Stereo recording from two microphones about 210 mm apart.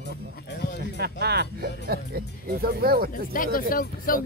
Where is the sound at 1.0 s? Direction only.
50° right (ahead or behind).